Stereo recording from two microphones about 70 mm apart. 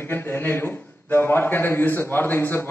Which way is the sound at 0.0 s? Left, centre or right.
Left.